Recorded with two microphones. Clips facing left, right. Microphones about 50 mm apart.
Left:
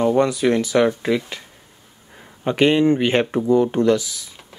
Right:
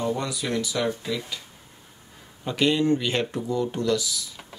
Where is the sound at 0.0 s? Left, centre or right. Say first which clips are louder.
Left 11 dB; left.